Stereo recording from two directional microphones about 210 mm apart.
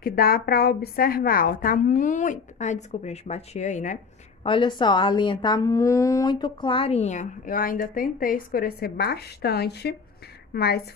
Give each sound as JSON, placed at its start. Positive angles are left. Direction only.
{"t": 0.0, "sound": "speech", "side_deg": 45}
{"t": 4.5, "sound": "a woman's voice", "side_deg": 20}